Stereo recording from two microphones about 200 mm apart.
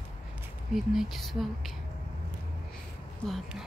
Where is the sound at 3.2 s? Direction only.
Centre (ahead or behind).